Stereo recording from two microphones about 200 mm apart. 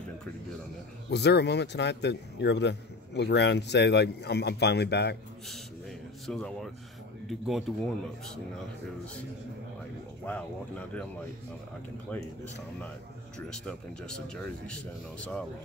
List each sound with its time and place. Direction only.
1.1 s speech: 60° left (ahead or behind)
6.2 s speech: centre (ahead or behind)
10.3 s speech: 5° left (ahead or behind)
12.1 s speech: 5° left (ahead or behind)
13.5 s speech: 5° left (ahead or behind)